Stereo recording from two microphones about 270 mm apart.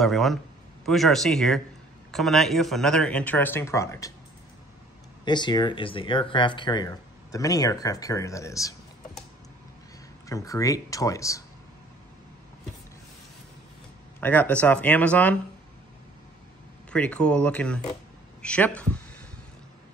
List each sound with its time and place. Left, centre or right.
0.0 s speech: centre
5.2 s speech: centre
10.2 s speech: centre
14.2 s speech: centre
16.9 s speech: centre